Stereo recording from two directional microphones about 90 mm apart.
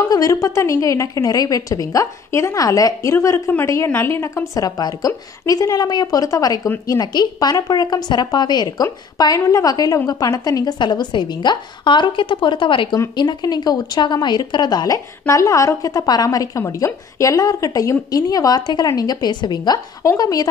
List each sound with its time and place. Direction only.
0.1 s a woman's voice: 40° left (ahead or behind)
4.6 s a woman's voice: 45° left (ahead or behind); by 12.9 s 65° left (ahead or behind)
13.1 s speech: 55° left (ahead or behind)
20.0 s a woman's voice: 40° left (ahead or behind)